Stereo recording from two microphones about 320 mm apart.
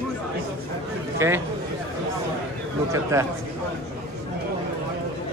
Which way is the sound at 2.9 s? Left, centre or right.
Centre.